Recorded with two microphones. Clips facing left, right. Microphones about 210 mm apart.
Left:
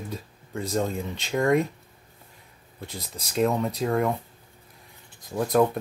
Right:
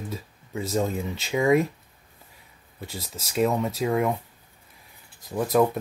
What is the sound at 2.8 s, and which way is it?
Speech, centre (ahead or behind).